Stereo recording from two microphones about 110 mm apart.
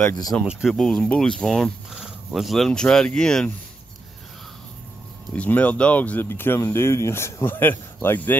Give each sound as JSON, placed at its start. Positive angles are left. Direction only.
{"t": 0.4, "sound": "speech", "side_deg": -5}
{"t": 5.3, "sound": "speech", "side_deg": 15}